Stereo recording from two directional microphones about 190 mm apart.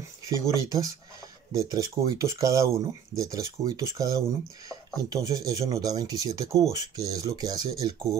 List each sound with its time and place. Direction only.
0.3 s speech: 15° right (ahead or behind)